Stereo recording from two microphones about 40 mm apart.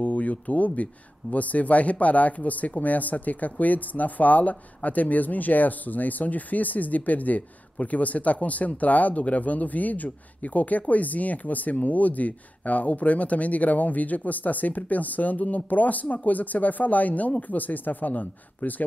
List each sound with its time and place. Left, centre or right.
0.0 s speech: left